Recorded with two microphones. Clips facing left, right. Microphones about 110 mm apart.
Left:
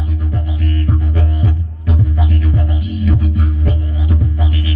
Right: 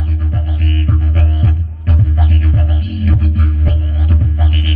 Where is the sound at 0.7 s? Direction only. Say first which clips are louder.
Even; 10° left (ahead or behind).